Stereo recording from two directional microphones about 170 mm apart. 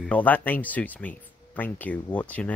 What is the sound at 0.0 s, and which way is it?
Speech, 10° left (ahead or behind).